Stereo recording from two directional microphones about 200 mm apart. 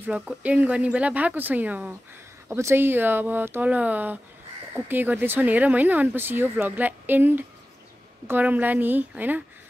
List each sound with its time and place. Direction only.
0.0 s speech: 5° right (ahead or behind)